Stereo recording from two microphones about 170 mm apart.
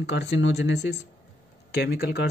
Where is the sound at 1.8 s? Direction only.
70° left (ahead or behind).